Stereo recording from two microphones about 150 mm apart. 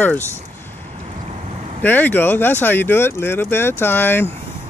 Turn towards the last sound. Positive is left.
turn(degrees=15)  # may be behind; listen again after turning